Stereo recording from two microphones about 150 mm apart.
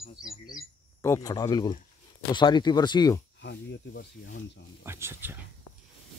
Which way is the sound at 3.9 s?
90° left.